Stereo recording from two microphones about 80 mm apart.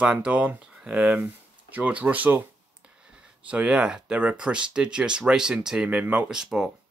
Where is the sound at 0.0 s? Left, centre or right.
Centre.